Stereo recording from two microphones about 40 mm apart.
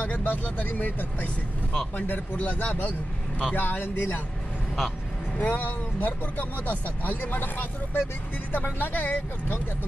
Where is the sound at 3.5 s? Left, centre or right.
Left.